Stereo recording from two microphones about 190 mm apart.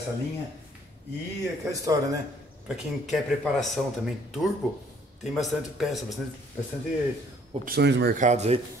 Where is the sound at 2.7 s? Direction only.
Centre (ahead or behind).